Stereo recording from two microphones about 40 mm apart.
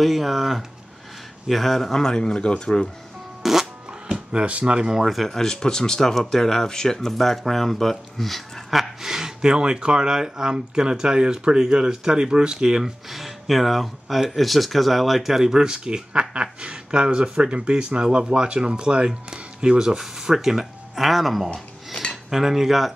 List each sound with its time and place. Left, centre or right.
0.0 s speech: centre
1.5 s speech: centre
2.0 s speech: centre
3.4 s music: centre
4.1 s speech: right
4.7 s speech: centre
5.1 s speech: centre
5.4 s speech: centre
13.1 s speech: centre; by 20.0 s right
20.0 s speech: centre
22.1 s cutlery: centre